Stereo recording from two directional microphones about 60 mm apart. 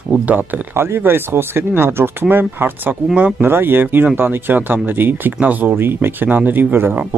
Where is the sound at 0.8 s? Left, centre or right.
Right.